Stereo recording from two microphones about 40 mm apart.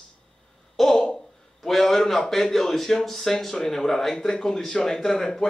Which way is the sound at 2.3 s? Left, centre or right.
Centre.